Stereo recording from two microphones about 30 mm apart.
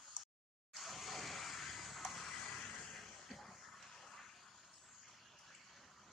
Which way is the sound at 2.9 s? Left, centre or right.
Centre.